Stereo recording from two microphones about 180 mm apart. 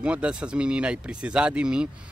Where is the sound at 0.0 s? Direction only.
5° right (ahead or behind).